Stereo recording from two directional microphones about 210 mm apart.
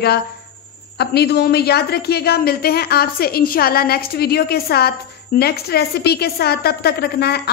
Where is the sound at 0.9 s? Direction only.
50° left (ahead or behind).